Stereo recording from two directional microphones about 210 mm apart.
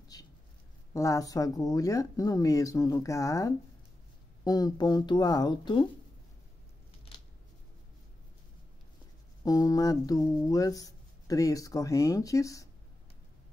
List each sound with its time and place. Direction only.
0.1 s a sound: 20° left (ahead or behind)
0.9 s speech: 15° left (ahead or behind)
9.4 s speech: 15° left (ahead or behind)